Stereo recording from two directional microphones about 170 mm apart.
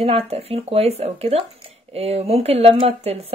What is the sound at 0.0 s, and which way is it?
Speech, 35° right (ahead or behind).